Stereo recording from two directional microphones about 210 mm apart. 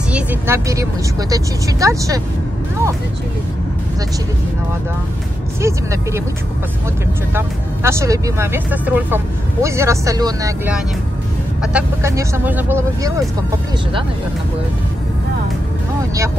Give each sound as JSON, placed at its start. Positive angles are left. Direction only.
{"t": 0.1, "sound": "speech", "side_deg": -10}
{"t": 5.6, "sound": "speech", "side_deg": -15}
{"t": 7.3, "sound": "speech", "side_deg": -10}